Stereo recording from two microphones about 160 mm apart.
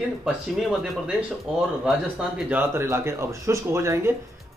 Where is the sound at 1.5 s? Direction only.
5° right (ahead or behind).